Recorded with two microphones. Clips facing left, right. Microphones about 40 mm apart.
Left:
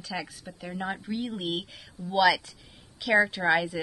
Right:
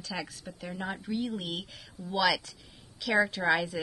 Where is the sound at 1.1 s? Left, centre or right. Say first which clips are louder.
Even; centre.